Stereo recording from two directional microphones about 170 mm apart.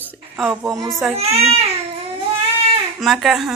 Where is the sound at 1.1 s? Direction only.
35° right (ahead or behind).